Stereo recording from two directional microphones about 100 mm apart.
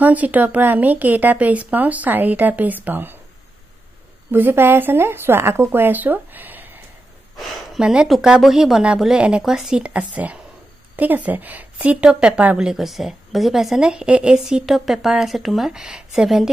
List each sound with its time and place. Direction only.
0.0 s speech: 15° right (ahead or behind)
4.3 s speech: 20° right (ahead or behind)
7.3 s a woman's voice: centre (ahead or behind)